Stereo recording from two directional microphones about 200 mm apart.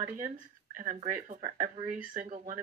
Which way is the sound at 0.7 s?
45° right (ahead or behind).